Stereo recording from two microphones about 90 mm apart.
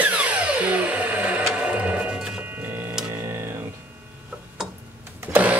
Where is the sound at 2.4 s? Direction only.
20° right (ahead or behind).